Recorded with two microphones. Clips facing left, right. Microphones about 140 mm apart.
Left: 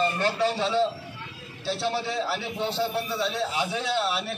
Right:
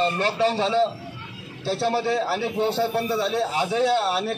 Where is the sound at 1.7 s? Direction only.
50° right (ahead or behind).